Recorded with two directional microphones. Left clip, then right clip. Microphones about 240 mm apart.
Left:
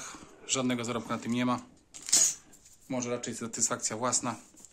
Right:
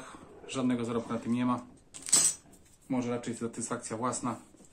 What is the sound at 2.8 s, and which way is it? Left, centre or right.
Speech, left.